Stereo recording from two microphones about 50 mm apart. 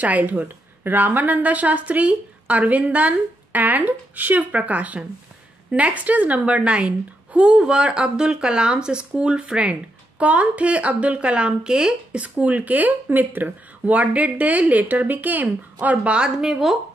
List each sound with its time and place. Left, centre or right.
0.0 s a woman's voice: right
16.2 s a woman's voice: centre